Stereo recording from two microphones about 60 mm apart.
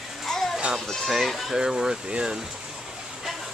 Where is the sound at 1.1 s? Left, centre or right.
Centre.